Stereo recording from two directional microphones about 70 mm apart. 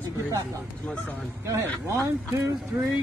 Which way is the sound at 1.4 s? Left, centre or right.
Right.